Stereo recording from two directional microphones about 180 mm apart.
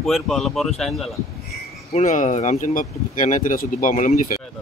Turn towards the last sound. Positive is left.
turn(degrees=45)  # may be behind; listen again after turning